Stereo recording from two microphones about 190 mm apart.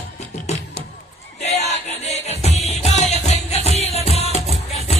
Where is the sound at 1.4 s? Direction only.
35° left (ahead or behind).